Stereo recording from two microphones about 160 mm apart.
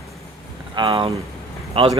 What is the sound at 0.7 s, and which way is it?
Speech, 30° right (ahead or behind).